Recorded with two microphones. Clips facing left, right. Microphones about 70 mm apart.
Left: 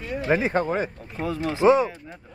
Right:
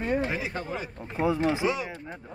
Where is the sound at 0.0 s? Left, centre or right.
Right.